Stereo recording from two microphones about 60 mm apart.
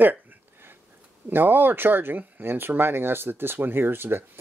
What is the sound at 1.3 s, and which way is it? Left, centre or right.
Speech, right.